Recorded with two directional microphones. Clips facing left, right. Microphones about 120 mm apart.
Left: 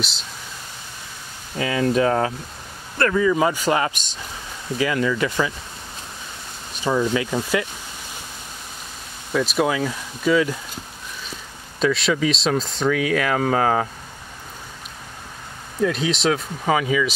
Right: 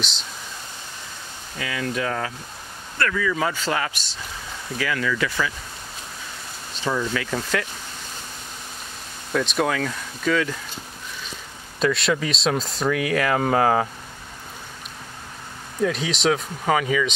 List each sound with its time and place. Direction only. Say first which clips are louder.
1.6 s speech: left 8 dB; 30° left (ahead or behind)
6.7 s speech: left 4 dB; 15° left (ahead or behind)
9.3 s speech: left 2 dB; 5° left (ahead or behind)
11.8 s speech: left 2 dB; centre (ahead or behind)
15.8 s speech: left 2 dB; centre (ahead or behind)